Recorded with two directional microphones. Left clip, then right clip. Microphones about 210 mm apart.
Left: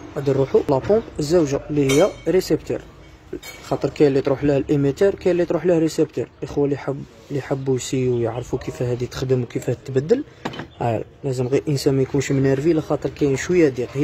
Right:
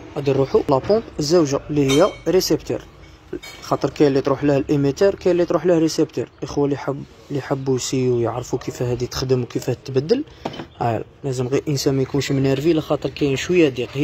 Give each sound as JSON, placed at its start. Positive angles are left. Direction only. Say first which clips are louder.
{"t": 0.1, "sound": "speech", "louder": "even", "side_deg": 0}